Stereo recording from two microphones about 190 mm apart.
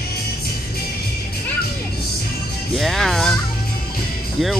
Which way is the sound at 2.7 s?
Centre (ahead or behind).